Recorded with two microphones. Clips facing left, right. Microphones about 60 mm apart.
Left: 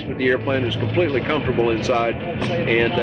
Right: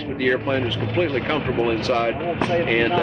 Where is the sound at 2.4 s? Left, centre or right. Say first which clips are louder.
Right 2 dB; right.